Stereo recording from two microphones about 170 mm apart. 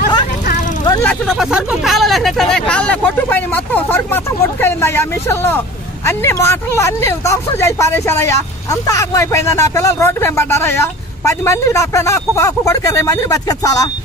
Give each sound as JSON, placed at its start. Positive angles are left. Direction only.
{"t": 1.0, "sound": "speech", "side_deg": 0}